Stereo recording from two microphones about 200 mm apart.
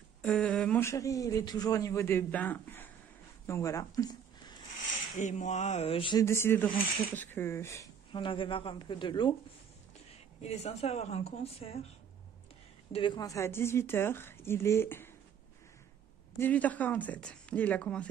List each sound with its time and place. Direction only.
0.2 s speech: 5° left (ahead or behind)
5.1 s a woman's voice: 35° left (ahead or behind)
6.2 s speech: 15° left (ahead or behind)
10.4 s a woman's voice: 30° left (ahead or behind)
12.9 s speech: 25° left (ahead or behind)
16.3 s speech: 10° left (ahead or behind)